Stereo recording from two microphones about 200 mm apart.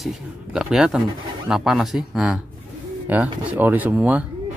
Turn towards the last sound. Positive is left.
turn(degrees=-5)  # may be behind; listen again after turning